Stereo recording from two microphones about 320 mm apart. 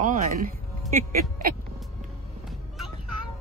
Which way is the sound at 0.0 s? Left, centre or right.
Right.